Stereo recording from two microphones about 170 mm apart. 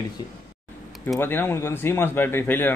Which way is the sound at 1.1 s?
15° left (ahead or behind).